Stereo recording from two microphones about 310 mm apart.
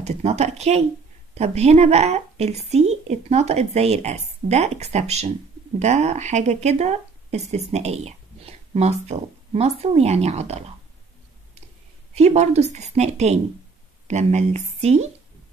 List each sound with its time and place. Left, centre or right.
0.0 s a woman's voice: right
12.2 s a woman's voice: right